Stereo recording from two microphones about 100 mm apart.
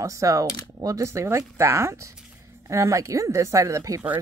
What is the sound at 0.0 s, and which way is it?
Speech, 35° right (ahead or behind).